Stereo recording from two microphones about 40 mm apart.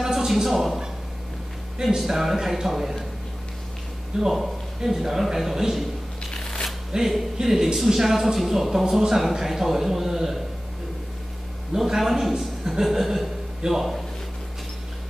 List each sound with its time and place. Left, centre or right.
0.0 s a man's voice: centre
2.0 s speech: centre
4.2 s speech: centre
6.3 s shuffling cards: centre
6.9 s speech: centre
11.7 s a man's voice: centre